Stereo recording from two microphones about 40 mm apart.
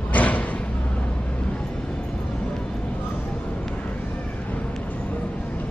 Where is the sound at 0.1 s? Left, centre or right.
Left.